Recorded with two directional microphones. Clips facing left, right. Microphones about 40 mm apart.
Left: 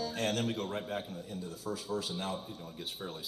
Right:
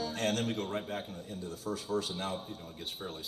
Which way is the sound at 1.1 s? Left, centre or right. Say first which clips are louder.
Even; right.